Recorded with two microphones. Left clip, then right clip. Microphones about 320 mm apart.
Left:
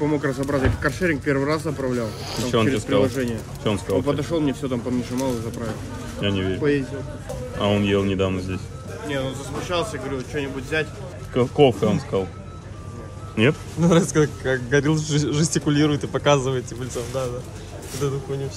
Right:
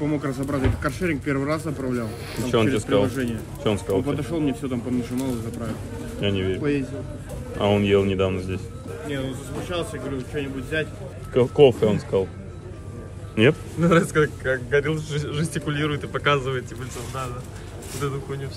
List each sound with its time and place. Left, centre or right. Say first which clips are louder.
0.0 s speech: left 3 dB; centre
13.3 s a man's voice: right 1 dB; centre
18.0 s a man's voice: left 3 dB; centre